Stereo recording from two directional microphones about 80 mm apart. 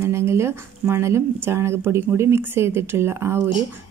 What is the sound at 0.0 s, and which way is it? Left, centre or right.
Speech, right.